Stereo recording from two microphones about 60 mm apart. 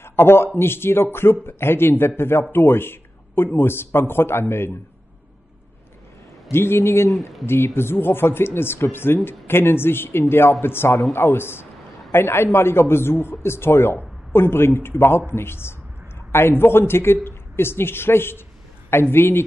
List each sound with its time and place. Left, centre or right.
0.0 s a sound: left
0.6 s speech: left
6.5 s speech: left
7.1 s speech: centre
7.4 s speech: left